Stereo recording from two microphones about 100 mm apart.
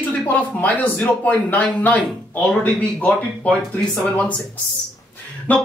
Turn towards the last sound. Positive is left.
turn(degrees=15)  # may be behind; listen again after turning